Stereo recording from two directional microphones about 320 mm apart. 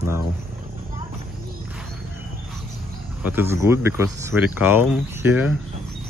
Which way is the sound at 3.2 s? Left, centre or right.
Centre.